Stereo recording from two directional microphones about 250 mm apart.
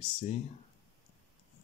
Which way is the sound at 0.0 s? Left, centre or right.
Left.